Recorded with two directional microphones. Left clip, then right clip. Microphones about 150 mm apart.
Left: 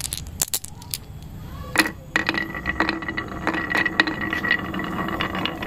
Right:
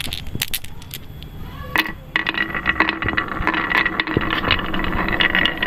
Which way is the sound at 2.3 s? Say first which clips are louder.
Right 5 dB; centre (ahead or behind).